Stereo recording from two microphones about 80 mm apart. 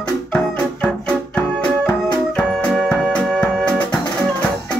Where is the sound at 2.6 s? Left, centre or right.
Centre.